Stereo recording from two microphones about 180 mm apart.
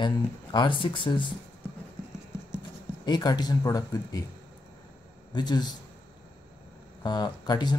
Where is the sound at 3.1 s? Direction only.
25° left (ahead or behind).